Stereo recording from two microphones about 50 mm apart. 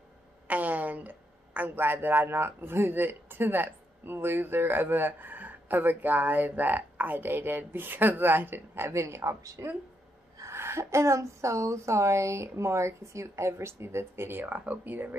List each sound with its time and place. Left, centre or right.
0.5 s speech: right
8.9 s a woman's voice: right